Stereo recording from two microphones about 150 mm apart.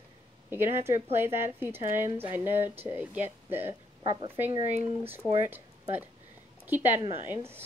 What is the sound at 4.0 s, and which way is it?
Speech, 35° right (ahead or behind).